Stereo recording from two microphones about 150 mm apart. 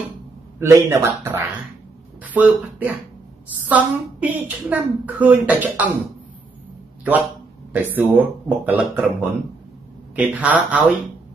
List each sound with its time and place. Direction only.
0.6 s a woman's voice: 15° right (ahead or behind)
7.7 s a woman's voice: 15° right (ahead or behind)
10.1 s a woman's voice: 10° right (ahead or behind)